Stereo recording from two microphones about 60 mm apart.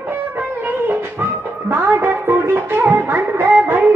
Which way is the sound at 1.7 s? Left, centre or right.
Right.